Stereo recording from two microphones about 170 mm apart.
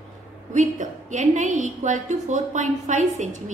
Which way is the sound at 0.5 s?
45° right (ahead or behind).